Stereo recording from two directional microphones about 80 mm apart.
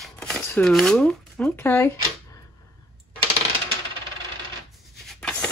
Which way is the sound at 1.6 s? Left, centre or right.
Left.